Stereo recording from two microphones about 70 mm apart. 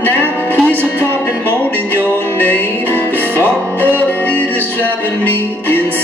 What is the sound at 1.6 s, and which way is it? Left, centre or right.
Music, left.